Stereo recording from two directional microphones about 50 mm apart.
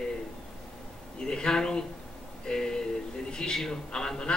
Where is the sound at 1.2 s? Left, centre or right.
Centre.